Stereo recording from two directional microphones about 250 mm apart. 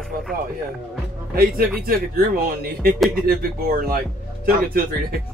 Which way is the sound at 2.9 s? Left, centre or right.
Centre.